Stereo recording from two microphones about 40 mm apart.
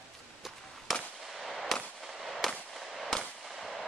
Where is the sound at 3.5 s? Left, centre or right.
Centre.